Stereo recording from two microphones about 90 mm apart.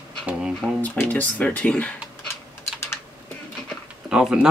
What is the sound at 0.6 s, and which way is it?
Speech, 15° right (ahead or behind).